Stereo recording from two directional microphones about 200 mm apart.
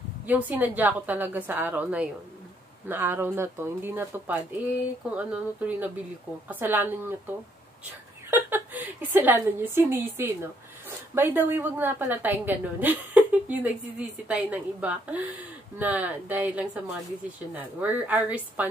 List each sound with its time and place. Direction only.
0.3 s a woman's voice: 10° right (ahead or behind)
8.3 s a woman's voice: 10° right (ahead or behind)